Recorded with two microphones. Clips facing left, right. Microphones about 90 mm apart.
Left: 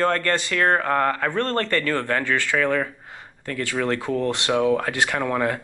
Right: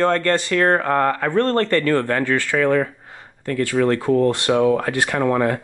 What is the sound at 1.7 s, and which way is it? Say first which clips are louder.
Speech: right 5 dB; 55° right (ahead or behind).